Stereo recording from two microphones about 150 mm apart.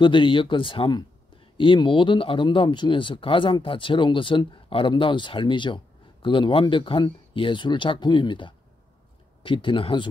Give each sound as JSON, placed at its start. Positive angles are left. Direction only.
{"t": 0.0, "sound": "speech", "side_deg": 35}